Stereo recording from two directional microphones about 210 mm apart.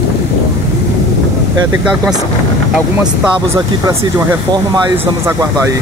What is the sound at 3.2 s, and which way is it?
Speech, 15° right (ahead or behind).